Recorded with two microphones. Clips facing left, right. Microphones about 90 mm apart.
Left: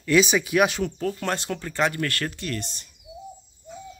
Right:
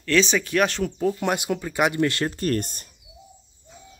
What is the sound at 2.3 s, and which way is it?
Speech, 45° right (ahead or behind).